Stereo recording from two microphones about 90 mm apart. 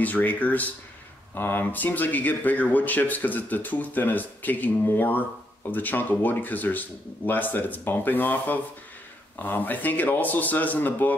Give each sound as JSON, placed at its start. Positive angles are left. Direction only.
{"t": 0.0, "sound": "speech", "side_deg": 20}